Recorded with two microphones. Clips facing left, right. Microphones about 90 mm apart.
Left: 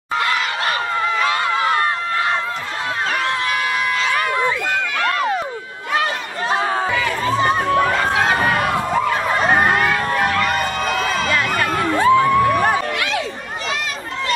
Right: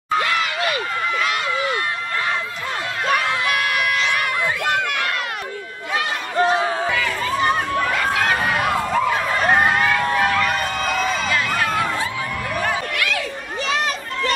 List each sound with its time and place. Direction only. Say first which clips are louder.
1.2 s a sound: left 4 dB; 45° left (ahead or behind)
7.2 s crowd: left 4 dB; 25° left (ahead or behind)
9.5 s crowd: even; centre (ahead or behind)
12.0 s music: left 13 dB; 55° left (ahead or behind)